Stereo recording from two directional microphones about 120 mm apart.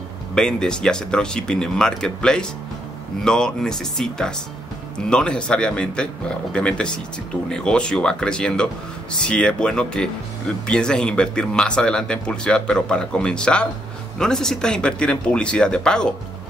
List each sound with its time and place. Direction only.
0.3 s speech: 5° left (ahead or behind)